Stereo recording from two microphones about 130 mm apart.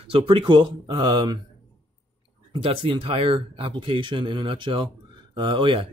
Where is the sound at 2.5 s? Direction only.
45° right (ahead or behind).